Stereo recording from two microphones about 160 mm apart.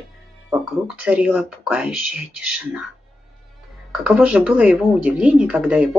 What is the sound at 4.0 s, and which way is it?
Speech, 5° right (ahead or behind).